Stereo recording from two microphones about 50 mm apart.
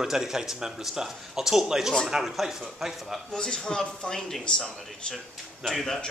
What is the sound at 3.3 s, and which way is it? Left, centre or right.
Speech, centre.